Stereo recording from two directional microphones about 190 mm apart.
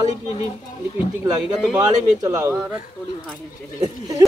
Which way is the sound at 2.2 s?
15° right (ahead or behind).